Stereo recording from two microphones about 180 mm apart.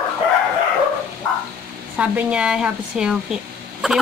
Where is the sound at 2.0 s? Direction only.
5° right (ahead or behind).